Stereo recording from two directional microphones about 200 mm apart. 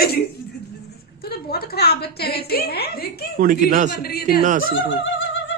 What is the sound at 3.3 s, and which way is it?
Speech, 45° right (ahead or behind).